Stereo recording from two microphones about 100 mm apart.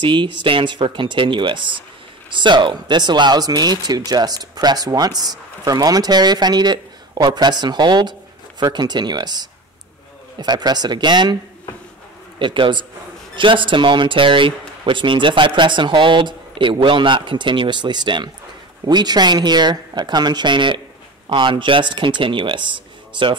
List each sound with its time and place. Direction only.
0.0 s speech: 50° right (ahead or behind)
12.4 s speech: 55° right (ahead or behind)